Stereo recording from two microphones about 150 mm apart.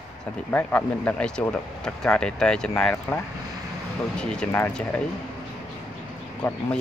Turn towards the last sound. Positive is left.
turn(degrees=15)  # may be behind; listen again after turning